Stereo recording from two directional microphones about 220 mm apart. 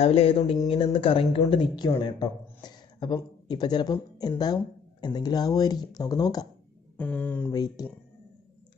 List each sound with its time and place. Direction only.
0.0 s speech: 25° left (ahead or behind)